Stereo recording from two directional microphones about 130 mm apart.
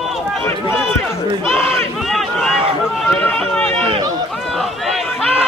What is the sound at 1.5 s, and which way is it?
Speech, 20° left (ahead or behind).